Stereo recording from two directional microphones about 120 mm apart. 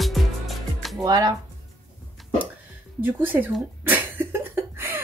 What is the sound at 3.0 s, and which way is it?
Cough, 15° right (ahead or behind).